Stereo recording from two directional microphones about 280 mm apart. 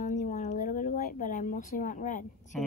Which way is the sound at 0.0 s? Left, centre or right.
Left.